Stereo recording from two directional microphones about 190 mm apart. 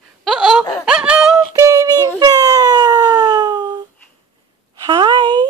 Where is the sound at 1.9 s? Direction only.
15° left (ahead or behind).